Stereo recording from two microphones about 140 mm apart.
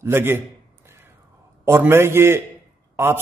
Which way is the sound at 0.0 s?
15° right (ahead or behind).